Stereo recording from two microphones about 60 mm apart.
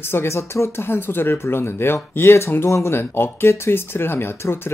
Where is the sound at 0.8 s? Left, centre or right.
Left.